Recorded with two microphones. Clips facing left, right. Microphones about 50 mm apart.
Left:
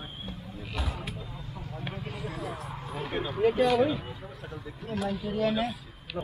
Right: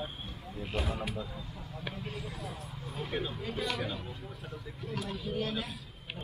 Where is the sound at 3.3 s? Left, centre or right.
Left.